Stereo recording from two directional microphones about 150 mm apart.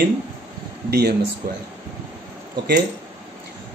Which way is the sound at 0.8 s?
90° right.